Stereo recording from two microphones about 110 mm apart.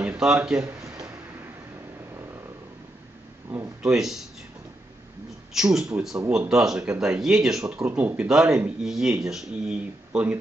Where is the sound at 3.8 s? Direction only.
5° right (ahead or behind).